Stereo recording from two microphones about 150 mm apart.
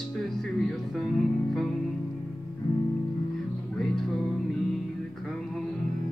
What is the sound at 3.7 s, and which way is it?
Music, 5° left (ahead or behind).